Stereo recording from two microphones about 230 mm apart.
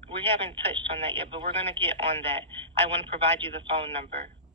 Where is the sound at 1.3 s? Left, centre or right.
Right.